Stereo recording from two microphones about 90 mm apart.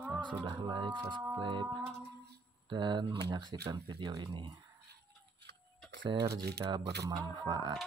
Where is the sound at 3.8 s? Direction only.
60° right (ahead or behind).